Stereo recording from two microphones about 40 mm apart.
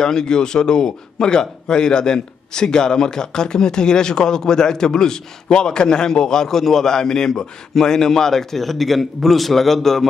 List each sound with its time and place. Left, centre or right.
0.0 s a man's voice: centre